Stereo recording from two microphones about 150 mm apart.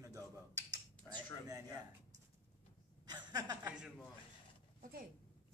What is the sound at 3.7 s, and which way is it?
Speech, 5° right (ahead or behind).